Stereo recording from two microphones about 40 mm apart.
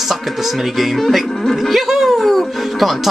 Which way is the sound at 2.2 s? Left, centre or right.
Centre.